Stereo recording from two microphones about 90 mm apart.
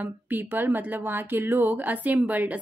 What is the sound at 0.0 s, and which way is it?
Speech, 20° right (ahead or behind).